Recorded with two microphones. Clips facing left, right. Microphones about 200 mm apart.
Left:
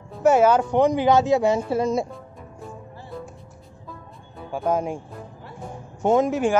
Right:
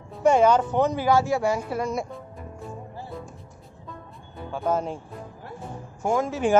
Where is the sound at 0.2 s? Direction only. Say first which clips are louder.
Left 2 dB; 5° left (ahead or behind); by 2.0 s 25° left (ahead or behind).